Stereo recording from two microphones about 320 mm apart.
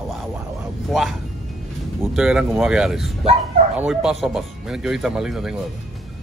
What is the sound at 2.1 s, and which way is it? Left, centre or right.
Speech, centre.